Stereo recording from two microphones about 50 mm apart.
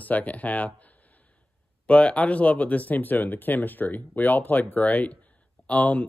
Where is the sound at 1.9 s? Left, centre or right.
Left.